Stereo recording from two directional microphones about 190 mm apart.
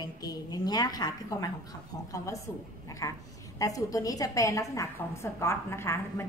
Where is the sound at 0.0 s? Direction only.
20° left (ahead or behind).